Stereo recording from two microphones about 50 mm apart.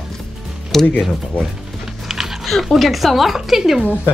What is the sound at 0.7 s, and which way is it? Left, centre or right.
Speech, centre.